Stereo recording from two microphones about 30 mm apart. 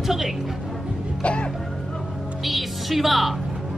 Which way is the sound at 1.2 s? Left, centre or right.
Left.